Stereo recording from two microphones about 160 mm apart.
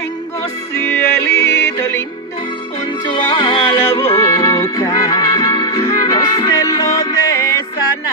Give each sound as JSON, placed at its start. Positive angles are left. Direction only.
{"t": 0.8, "sound": "music", "side_deg": 15}
{"t": 3.2, "sound": "music", "side_deg": 30}